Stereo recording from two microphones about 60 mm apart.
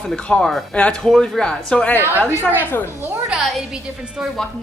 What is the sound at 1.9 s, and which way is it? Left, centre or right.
Speech, left.